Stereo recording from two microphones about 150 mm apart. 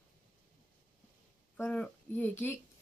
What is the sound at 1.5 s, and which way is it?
Speech, 10° left (ahead or behind).